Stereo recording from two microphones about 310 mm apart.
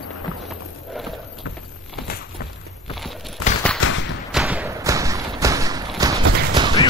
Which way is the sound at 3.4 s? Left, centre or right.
Left.